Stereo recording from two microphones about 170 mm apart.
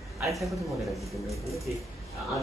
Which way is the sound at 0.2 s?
Centre (ahead or behind).